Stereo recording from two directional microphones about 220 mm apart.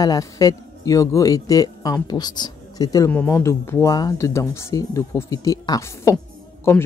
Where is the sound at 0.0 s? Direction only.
15° left (ahead or behind).